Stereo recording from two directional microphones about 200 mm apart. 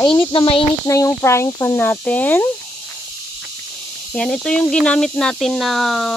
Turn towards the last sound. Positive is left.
turn(degrees=0)  # may be behind; listen again after turning